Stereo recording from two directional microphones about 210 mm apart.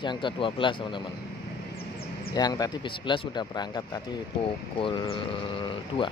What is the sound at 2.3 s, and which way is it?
Speech, 20° left (ahead or behind).